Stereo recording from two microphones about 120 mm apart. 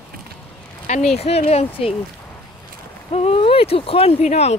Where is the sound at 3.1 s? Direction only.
55° left (ahead or behind).